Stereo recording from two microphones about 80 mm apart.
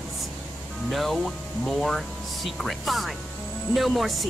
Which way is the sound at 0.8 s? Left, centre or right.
Centre.